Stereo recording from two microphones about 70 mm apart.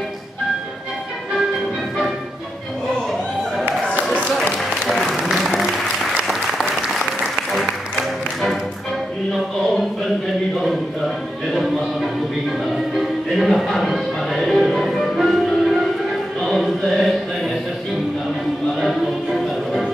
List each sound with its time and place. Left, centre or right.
4.6 s applause: centre
7.3 s applause: centre
11.5 s music: centre
16.3 s chant: centre
18.8 s music: centre